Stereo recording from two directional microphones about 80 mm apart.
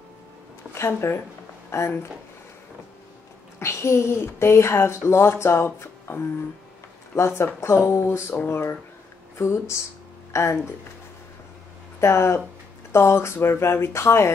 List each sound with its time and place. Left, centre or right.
0.7 s speech: left
3.5 s speech: left
12.0 s speech: left